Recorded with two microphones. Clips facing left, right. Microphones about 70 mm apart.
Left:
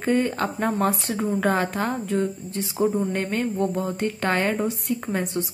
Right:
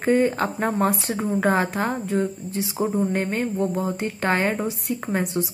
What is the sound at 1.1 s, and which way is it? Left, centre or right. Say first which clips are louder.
Speech: even; centre.